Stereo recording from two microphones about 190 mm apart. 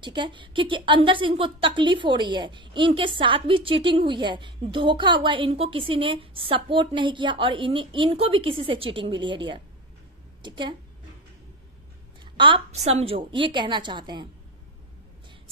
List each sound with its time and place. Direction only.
0.0 s a woman's voice: 25° right (ahead or behind)
12.4 s a woman's voice: 25° right (ahead or behind)